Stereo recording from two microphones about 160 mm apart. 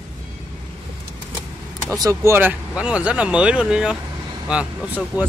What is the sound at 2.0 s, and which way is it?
Speech, 15° right (ahead or behind).